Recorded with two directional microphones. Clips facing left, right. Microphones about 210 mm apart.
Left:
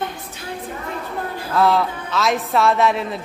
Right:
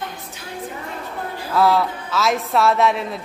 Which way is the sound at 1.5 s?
Centre (ahead or behind).